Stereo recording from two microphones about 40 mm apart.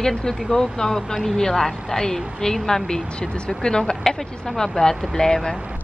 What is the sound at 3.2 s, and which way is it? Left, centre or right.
Speech, left.